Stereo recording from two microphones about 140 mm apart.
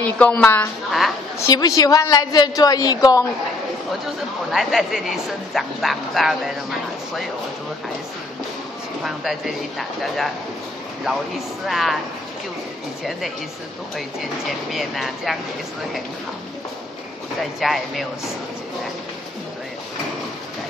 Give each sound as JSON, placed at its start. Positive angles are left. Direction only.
{"t": 0.0, "sound": "a woman's voice", "side_deg": 10}
{"t": 1.5, "sound": "a woman's voice", "side_deg": 25}
{"t": 4.0, "sound": "speech", "side_deg": 0}
{"t": 9.0, "sound": "speech", "side_deg": 0}
{"t": 13.9, "sound": "speech", "side_deg": 0}
{"t": 17.4, "sound": "speech", "side_deg": 0}